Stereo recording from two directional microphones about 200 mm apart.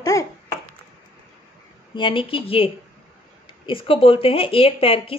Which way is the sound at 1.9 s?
25° left (ahead or behind).